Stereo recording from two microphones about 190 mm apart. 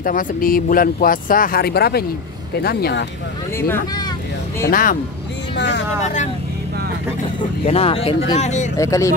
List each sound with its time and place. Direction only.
0.0 s speech: 45° left (ahead or behind)
3.5 s speech: 10° left (ahead or behind)
4.6 s speech: 50° left (ahead or behind)
7.6 s speech: 30° left (ahead or behind)
8.7 s speech: 15° left (ahead or behind)